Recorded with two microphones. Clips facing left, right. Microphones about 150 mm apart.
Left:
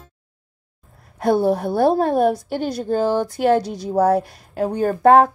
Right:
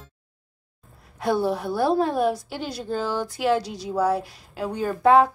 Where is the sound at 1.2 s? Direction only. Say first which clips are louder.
Left 6 dB; 50° left (ahead or behind).